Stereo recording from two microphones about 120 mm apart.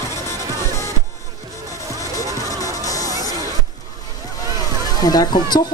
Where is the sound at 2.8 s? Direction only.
30° left (ahead or behind).